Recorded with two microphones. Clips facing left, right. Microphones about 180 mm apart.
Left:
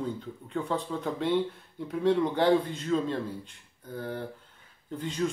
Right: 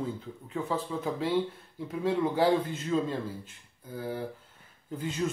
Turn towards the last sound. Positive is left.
turn(degrees=-5)  # may be behind; listen again after turning